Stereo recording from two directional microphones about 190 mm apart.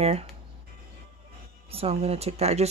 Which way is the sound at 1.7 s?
30° right (ahead or behind).